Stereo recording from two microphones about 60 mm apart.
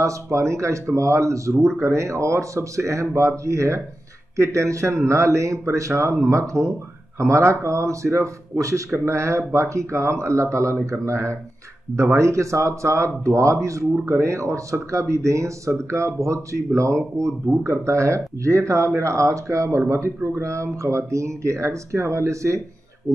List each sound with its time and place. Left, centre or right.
0.0 s speech: right
23.1 s speech: centre